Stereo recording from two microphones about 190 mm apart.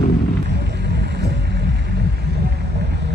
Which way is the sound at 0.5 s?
60° right (ahead or behind).